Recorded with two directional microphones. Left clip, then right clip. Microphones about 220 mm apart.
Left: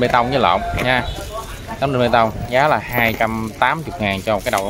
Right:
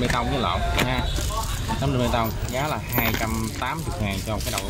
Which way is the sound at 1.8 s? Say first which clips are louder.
Left 10 dB; 20° left (ahead or behind).